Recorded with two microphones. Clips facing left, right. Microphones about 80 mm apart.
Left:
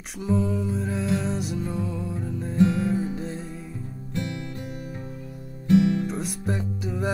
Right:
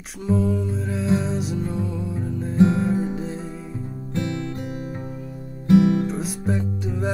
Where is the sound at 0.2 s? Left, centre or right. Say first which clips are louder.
Right 2 dB; centre.